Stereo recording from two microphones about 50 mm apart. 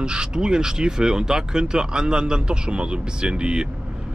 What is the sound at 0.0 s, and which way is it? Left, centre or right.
Speech, centre.